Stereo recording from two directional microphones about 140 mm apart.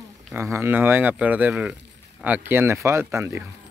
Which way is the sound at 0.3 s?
15° right (ahead or behind).